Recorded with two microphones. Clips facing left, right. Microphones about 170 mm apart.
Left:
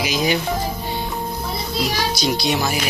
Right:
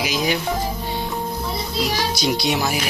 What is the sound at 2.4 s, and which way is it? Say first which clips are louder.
Speech: even; 5° right (ahead or behind).